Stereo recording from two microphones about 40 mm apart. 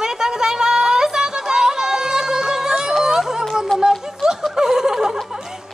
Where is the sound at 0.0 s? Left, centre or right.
Centre.